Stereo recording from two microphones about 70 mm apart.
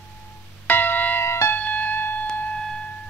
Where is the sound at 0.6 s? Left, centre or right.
Left.